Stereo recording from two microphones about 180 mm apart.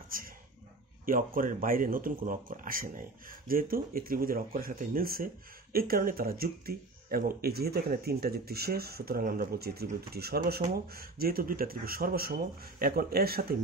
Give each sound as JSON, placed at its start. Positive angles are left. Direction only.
{"t": 0.1, "sound": "speech", "side_deg": -50}